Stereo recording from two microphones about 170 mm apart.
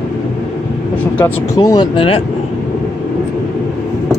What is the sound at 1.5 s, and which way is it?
Speech, 25° left (ahead or behind).